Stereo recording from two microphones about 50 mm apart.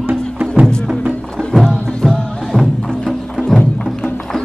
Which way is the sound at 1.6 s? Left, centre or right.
Centre.